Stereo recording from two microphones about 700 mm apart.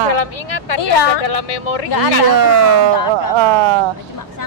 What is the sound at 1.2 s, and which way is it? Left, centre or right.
Speech, left.